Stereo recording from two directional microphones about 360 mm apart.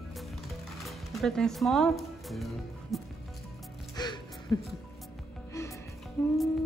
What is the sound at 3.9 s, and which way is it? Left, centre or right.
Music, centre.